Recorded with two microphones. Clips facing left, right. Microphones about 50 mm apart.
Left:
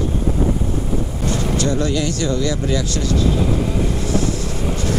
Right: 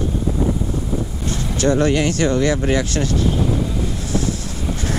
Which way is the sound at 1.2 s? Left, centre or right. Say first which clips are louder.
Left 4 dB; left.